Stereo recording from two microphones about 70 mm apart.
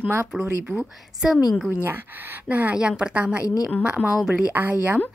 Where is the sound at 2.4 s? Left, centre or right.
Right.